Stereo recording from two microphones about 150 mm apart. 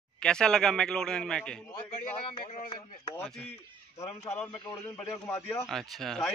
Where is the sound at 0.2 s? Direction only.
5° left (ahead or behind).